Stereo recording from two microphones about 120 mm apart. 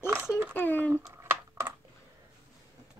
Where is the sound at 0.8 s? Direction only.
20° right (ahead or behind).